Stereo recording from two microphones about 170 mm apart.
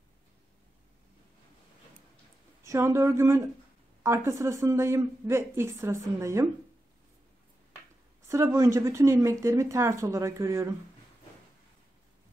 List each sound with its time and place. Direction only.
2.6 s a woman's voice: 15° right (ahead or behind)
8.3 s a woman's voice: 15° right (ahead or behind)